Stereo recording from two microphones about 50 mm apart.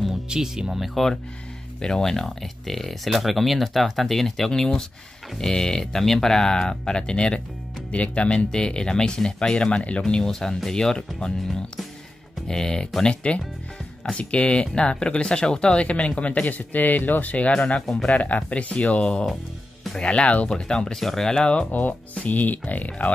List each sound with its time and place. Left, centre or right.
0.3 s speech: centre
0.8 s speech: centre
12.4 s speech: centre
21.7 s speech: left